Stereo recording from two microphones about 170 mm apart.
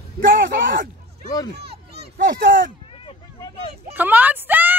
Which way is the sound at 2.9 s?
30° left (ahead or behind).